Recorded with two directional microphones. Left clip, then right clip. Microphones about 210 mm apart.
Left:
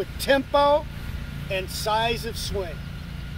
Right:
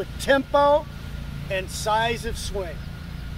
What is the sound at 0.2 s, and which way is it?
Speech, 20° left (ahead or behind).